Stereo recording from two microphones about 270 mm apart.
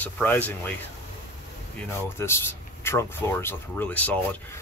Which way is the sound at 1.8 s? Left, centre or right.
Centre.